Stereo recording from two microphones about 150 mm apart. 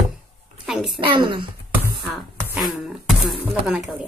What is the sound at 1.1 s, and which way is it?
Speech, 30° right (ahead or behind).